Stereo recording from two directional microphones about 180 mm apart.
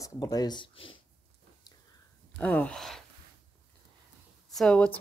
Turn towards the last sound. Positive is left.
turn(degrees=5)  # may be behind; listen again after turning